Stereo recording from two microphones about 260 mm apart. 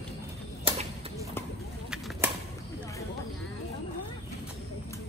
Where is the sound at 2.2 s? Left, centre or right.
Centre.